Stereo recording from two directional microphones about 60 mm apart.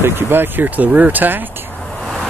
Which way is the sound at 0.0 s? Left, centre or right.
Right.